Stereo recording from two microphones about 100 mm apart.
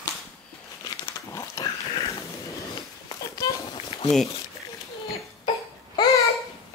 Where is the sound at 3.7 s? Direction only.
65° left (ahead or behind).